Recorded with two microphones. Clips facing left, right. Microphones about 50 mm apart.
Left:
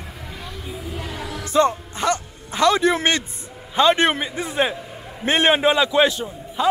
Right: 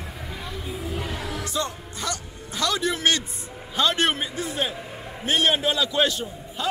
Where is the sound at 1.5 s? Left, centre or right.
Left.